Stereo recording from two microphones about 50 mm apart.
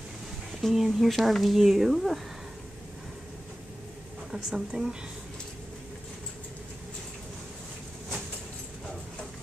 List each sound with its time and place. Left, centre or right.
0.6 s speech: centre
4.3 s a woman's voice: centre